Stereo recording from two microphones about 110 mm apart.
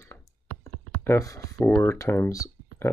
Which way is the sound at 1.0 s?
30° left (ahead or behind).